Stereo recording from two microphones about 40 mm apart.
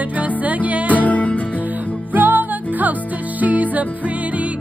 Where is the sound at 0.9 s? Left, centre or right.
Left.